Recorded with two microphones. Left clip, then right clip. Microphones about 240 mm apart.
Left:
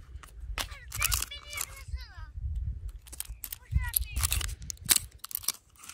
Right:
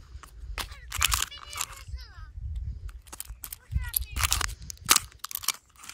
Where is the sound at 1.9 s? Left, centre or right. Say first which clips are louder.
Even; left.